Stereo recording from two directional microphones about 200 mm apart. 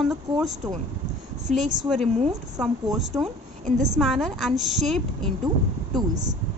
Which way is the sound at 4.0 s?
Centre (ahead or behind).